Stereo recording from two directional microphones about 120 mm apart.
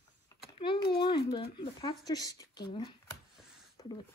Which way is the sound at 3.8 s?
30° left (ahead or behind).